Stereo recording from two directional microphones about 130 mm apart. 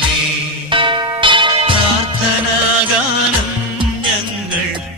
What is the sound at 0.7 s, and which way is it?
Music, 40° right (ahead or behind).